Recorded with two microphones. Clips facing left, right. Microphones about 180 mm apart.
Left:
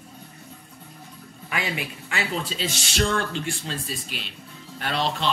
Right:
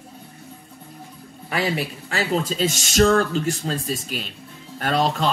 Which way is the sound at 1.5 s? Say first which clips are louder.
Right 6 dB; 35° right (ahead or behind).